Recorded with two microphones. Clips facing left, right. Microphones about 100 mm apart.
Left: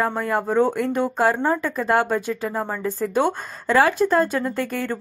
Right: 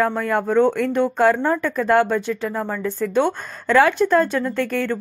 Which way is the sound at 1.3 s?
20° left (ahead or behind).